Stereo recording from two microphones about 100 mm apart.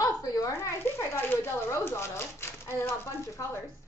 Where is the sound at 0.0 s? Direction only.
35° left (ahead or behind).